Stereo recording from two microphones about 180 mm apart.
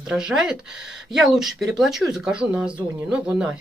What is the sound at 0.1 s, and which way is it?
Speech, 5° right (ahead or behind).